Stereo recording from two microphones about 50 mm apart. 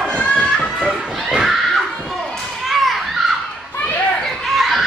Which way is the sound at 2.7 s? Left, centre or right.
Centre.